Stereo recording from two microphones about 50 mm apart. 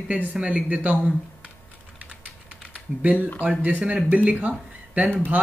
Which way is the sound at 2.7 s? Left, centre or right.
Right.